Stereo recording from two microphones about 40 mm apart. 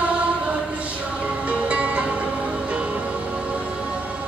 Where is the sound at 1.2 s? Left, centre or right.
Right.